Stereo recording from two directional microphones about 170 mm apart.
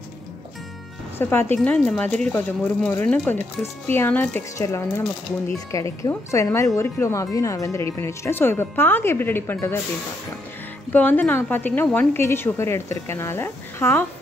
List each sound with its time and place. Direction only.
1.1 s a woman's voice: 15° left (ahead or behind)
10.9 s speech: 10° left (ahead or behind)